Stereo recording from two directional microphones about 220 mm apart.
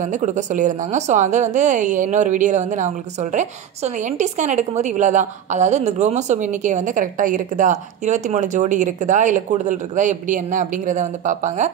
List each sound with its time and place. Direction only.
0.0 s a woman's voice: 35° right (ahead or behind)